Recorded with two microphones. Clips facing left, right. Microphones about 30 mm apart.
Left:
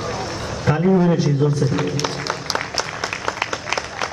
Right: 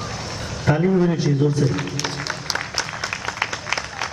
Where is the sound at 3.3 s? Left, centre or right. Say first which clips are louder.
Left 1 dB; centre.